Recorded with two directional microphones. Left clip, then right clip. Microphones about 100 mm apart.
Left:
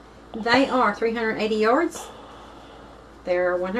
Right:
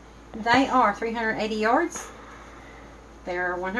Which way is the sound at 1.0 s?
20° right (ahead or behind).